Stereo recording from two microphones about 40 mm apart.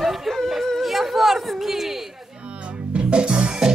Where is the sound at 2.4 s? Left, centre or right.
Right.